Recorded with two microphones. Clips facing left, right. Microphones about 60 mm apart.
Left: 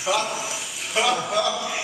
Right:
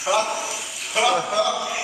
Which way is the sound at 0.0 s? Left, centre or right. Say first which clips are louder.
Right 2 dB; centre.